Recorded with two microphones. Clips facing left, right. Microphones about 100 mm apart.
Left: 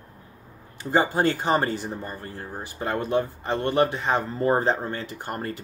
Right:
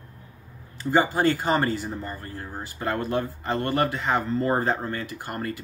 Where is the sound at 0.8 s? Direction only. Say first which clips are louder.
Right 1 dB; 25° left (ahead or behind).